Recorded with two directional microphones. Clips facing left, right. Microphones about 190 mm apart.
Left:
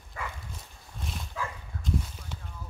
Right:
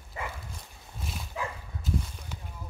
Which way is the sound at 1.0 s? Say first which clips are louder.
Even; 5° right (ahead or behind).